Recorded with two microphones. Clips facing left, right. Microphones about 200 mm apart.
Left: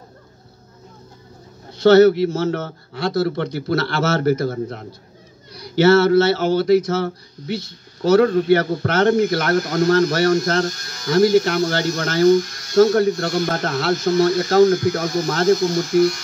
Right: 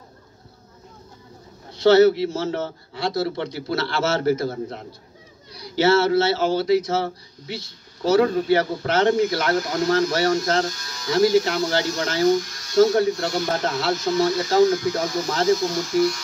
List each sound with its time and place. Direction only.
1.9 s a man's voice: 55° left (ahead or behind)